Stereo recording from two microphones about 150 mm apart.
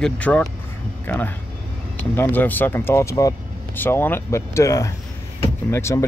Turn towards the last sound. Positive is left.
turn(degrees=20)  # may be behind; listen again after turning